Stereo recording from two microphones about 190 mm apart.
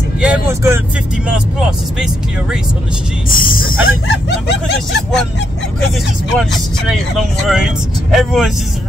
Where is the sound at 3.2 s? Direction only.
50° left (ahead or behind).